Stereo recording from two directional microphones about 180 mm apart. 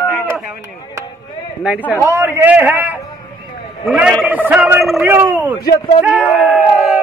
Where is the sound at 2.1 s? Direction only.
15° right (ahead or behind).